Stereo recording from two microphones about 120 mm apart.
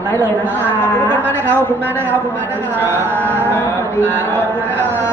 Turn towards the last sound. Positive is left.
turn(degrees=15)  # may be behind; listen again after turning